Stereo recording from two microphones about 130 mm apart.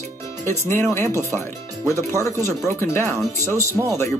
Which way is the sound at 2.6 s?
20° left (ahead or behind).